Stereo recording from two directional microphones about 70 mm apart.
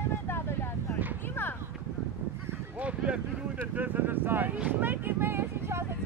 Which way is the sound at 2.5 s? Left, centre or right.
Right.